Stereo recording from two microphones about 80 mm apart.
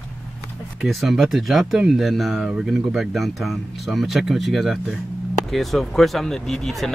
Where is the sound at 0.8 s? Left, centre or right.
Centre.